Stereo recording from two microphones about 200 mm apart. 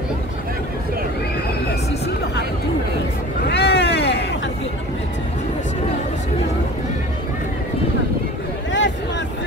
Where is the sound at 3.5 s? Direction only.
55° left (ahead or behind).